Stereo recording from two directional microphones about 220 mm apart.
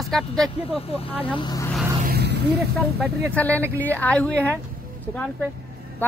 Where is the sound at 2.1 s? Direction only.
50° right (ahead or behind).